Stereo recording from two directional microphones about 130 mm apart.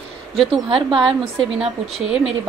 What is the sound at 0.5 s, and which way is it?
A woman's voice, 40° right (ahead or behind).